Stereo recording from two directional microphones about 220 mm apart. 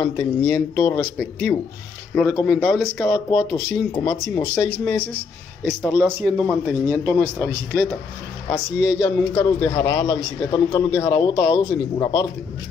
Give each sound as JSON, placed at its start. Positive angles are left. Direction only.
{"t": 0.0, "sound": "a man's voice", "side_deg": 10}
{"t": 3.3, "sound": "a man's voice", "side_deg": 20}
{"t": 5.7, "sound": "speech", "side_deg": 5}
{"t": 9.0, "sound": "a man's voice", "side_deg": 15}